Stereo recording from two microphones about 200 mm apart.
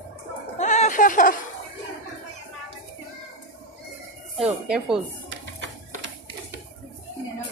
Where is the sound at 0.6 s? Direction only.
35° left (ahead or behind).